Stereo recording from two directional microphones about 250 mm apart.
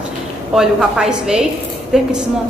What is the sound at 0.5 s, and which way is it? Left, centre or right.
A woman's voice, centre.